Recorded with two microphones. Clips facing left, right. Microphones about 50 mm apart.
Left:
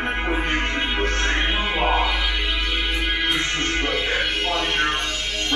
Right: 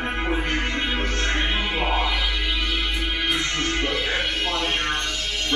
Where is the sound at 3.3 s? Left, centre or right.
Centre.